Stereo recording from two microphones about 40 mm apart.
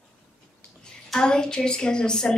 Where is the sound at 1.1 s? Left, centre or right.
Centre.